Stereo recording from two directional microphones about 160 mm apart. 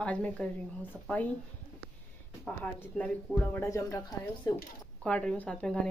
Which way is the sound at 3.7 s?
20° left (ahead or behind).